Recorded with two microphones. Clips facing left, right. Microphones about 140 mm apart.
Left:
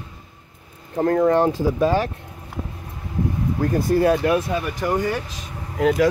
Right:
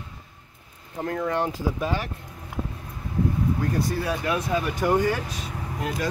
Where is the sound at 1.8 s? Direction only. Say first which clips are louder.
Left 11 dB; 70° left (ahead or behind).